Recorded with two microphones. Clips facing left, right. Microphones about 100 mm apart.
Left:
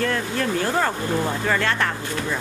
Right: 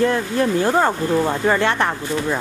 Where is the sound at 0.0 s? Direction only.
20° right (ahead or behind).